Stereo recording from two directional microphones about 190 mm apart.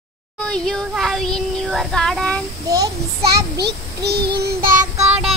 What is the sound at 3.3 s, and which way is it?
Child singing, 60° right (ahead or behind).